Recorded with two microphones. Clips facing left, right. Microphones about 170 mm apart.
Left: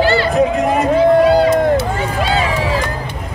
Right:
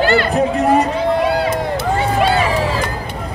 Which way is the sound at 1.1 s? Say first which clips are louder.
Left 5 dB; 50° left (ahead or behind).